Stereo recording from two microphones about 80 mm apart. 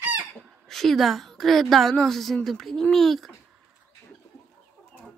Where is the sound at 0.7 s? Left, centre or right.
Centre.